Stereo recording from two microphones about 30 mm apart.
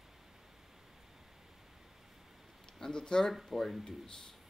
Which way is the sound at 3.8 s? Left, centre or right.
Left.